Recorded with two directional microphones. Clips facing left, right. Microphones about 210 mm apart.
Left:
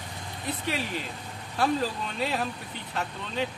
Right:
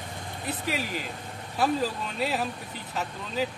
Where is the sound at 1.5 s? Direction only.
5° right (ahead or behind).